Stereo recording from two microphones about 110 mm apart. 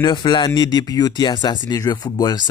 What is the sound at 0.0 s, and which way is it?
Speech, 45° left (ahead or behind).